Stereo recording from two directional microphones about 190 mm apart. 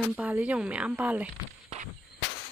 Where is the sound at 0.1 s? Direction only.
10° right (ahead or behind).